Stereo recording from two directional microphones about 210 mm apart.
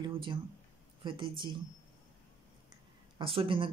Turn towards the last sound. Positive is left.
turn(degrees=-25)  # may be behind; listen again after turning